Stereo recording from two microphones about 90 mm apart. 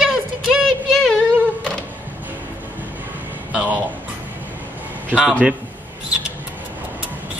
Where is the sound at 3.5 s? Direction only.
10° right (ahead or behind).